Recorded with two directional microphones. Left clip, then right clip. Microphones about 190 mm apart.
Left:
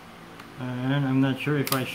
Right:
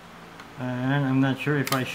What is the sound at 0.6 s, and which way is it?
Speech, 20° right (ahead or behind).